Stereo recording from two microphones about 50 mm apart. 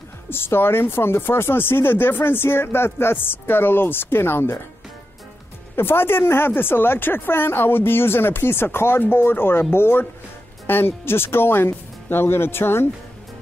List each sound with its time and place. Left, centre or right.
0.3 s speech: left
5.8 s speech: left